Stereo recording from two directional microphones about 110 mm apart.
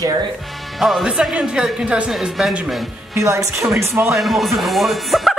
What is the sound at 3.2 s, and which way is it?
Speech, 30° right (ahead or behind).